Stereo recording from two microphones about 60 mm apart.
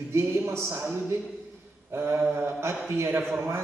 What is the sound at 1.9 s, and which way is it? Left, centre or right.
A man's voice, right.